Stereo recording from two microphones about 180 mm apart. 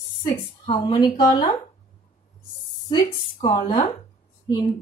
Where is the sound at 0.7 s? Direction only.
25° left (ahead or behind).